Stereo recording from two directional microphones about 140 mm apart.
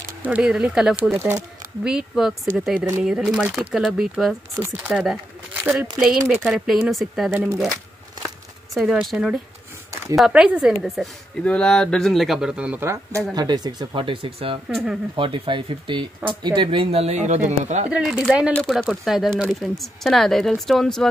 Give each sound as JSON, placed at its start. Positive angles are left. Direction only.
{"t": 0.2, "sound": "speech", "side_deg": -10}
{"t": 1.1, "sound": "speech", "side_deg": -15}
{"t": 1.9, "sound": "speech", "side_deg": -5}
{"t": 4.6, "sound": "speech", "side_deg": -20}
{"t": 4.9, "sound": "a sound", "side_deg": -5}
{"t": 5.9, "sound": "speech", "side_deg": -5}
{"t": 7.3, "sound": "speech", "side_deg": -10}
{"t": 8.7, "sound": "speech", "side_deg": 0}
{"t": 13.3, "sound": "speech", "side_deg": -30}
{"t": 14.7, "sound": "speech", "side_deg": 0}
{"t": 15.1, "sound": "speech", "side_deg": -40}
{"t": 17.9, "sound": "speech", "side_deg": -5}
{"t": 18.5, "sound": "speech", "side_deg": 5}